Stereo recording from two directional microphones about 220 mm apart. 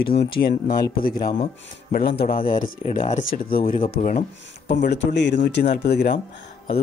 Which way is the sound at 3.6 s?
25° left (ahead or behind).